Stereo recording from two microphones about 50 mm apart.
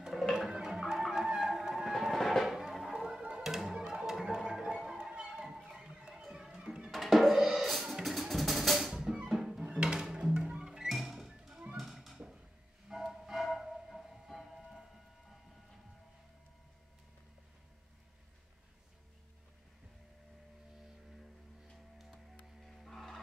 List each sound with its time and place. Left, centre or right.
0.0 s music: centre
6.9 s music: centre
9.6 s music: centre
10.3 s music: right
10.9 s music: centre
11.7 s a sound: centre
12.9 s music: centre
22.7 s music: centre